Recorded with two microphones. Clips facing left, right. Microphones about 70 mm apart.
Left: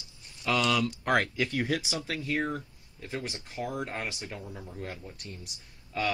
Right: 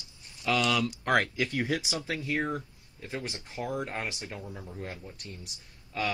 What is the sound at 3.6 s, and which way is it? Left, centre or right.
Speech, centre.